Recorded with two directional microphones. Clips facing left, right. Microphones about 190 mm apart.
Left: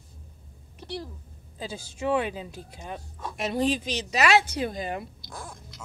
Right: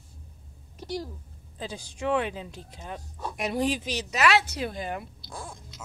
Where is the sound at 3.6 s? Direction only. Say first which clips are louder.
Left 2 dB; 20° left (ahead or behind).